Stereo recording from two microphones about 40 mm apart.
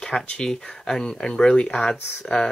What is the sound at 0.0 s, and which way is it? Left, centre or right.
Speech, centre.